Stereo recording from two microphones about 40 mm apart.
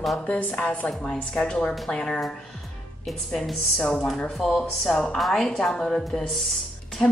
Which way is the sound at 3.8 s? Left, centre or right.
Left.